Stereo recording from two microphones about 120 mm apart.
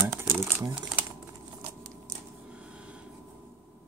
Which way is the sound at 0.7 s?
35° right (ahead or behind).